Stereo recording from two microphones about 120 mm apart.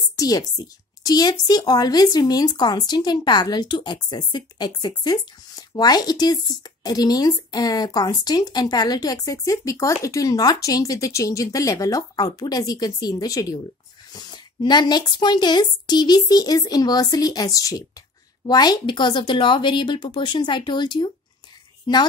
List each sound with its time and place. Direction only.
0.1 s speech: 30° left (ahead or behind)